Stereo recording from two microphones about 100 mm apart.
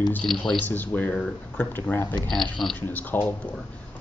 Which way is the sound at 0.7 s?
20° left (ahead or behind).